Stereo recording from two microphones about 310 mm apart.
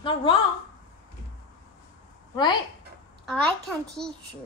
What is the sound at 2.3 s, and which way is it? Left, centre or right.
Speech, centre.